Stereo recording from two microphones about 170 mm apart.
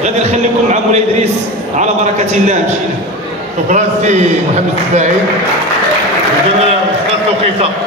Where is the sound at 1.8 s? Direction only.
45° right (ahead or behind).